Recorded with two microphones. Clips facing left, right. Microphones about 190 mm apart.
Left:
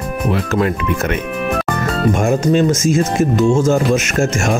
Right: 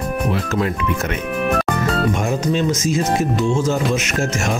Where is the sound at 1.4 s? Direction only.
Centre (ahead or behind).